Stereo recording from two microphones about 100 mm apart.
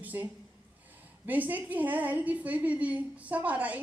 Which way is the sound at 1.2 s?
15° right (ahead or behind).